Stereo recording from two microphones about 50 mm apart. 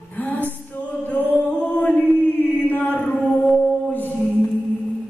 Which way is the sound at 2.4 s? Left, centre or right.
Left.